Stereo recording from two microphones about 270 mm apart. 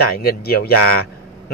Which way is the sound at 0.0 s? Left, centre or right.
Left.